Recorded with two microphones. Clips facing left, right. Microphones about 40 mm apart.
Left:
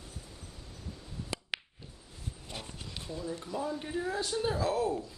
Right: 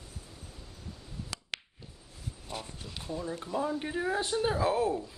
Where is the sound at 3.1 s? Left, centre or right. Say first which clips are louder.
Right 3 dB; right.